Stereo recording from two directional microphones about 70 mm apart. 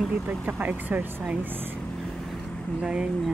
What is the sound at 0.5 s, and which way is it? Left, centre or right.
Speech, right.